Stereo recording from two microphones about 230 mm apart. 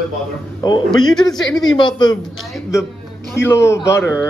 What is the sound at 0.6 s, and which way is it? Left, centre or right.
A man's voice, centre.